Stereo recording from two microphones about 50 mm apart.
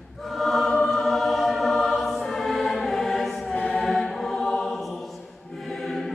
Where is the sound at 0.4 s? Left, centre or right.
Centre.